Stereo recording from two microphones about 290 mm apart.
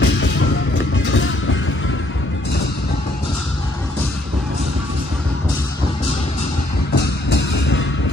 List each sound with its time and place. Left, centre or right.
0.0 s music: left
7.2 s music: left